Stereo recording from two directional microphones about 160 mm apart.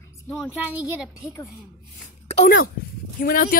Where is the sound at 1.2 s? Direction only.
20° left (ahead or behind).